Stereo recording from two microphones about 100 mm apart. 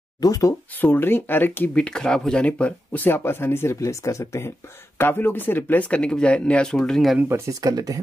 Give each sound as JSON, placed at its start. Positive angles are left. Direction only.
{"t": 0.2, "sound": "speech", "side_deg": 35}
{"t": 0.7, "sound": "speech", "side_deg": 20}
{"t": 1.8, "sound": "speech", "side_deg": 10}
{"t": 7.2, "sound": "speech", "side_deg": -25}
{"t": 7.6, "sound": "speech", "side_deg": -40}